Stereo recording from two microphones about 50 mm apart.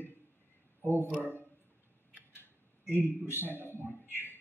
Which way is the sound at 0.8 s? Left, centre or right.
Right.